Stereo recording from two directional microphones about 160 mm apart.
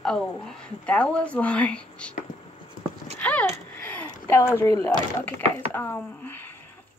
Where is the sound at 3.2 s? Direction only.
10° left (ahead or behind).